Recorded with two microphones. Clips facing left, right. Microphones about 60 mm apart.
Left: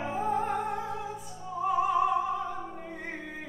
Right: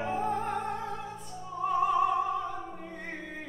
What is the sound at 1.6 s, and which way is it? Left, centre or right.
Opera, centre.